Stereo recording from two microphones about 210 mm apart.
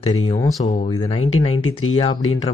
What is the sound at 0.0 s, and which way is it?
Speech, 20° left (ahead or behind).